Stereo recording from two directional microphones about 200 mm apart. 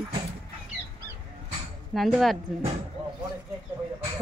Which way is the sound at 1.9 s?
Centre (ahead or behind).